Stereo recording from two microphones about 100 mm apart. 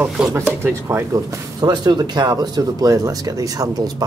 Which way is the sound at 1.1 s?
40° right (ahead or behind).